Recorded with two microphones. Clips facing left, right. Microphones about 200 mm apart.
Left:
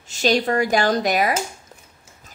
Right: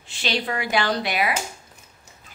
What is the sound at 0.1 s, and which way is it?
A woman's voice, 45° left (ahead or behind).